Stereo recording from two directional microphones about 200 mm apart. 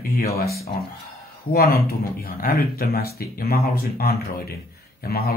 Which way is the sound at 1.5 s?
50° left (ahead or behind).